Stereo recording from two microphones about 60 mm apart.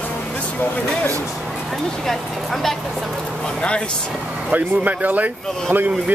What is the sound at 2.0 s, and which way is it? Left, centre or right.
Speech, centre.